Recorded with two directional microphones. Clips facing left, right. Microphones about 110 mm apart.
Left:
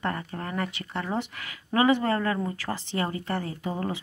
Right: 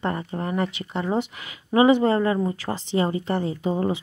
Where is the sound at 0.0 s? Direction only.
20° right (ahead or behind).